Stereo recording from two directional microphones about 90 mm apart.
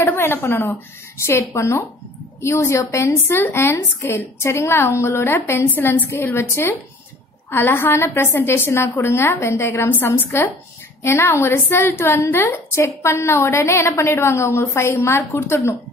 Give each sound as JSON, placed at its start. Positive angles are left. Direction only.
{"t": 0.0, "sound": "a woman's voice", "side_deg": 25}